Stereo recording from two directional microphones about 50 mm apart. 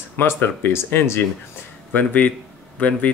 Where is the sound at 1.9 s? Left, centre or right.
Left.